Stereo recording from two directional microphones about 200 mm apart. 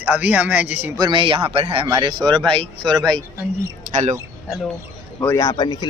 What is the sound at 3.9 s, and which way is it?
Speech, 35° right (ahead or behind).